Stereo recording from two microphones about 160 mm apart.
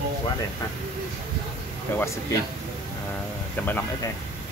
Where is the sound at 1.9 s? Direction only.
15° left (ahead or behind).